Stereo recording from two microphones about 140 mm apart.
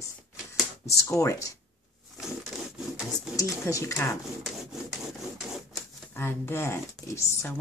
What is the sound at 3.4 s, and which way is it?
Speech, 20° left (ahead or behind).